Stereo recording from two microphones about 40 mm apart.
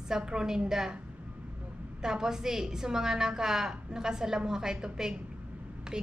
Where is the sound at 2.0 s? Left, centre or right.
Centre.